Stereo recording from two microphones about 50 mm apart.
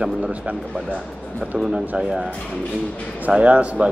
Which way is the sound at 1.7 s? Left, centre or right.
Right.